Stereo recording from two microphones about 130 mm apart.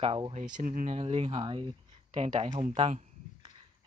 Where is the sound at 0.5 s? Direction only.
85° right.